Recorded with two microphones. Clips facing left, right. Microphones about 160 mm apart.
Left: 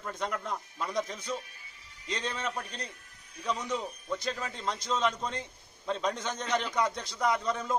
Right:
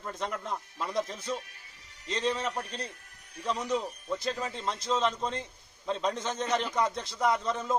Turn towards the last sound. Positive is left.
turn(degrees=-5)  # may be behind; listen again after turning